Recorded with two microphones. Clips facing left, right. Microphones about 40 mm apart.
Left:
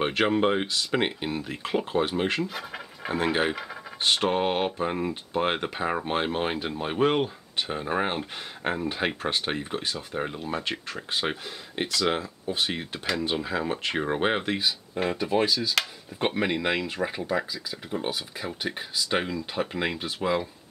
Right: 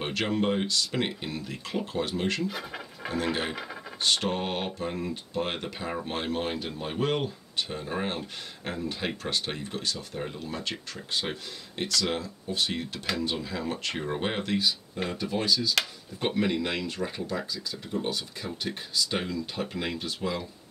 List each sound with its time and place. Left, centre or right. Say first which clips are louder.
0.4 s speech: left 3 dB; left
2.4 s speech: even; centre
3.1 s speech: left 4 dB; left
14.7 s speech: left 3 dB; centre